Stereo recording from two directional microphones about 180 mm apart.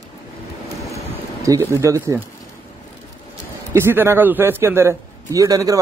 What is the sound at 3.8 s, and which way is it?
A man's voice, 15° right (ahead or behind).